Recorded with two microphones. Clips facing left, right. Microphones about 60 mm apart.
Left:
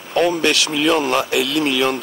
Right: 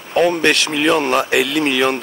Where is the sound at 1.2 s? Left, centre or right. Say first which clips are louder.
Right 2 dB; right.